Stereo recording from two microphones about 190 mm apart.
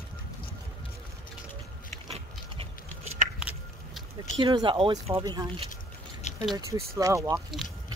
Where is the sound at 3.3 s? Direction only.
5° right (ahead or behind).